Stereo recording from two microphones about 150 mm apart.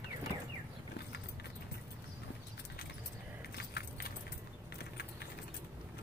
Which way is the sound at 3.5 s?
90° left.